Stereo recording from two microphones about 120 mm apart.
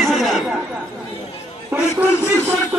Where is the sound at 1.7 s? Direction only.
15° right (ahead or behind).